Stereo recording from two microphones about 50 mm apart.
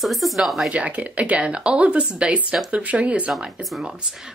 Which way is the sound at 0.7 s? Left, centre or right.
Right.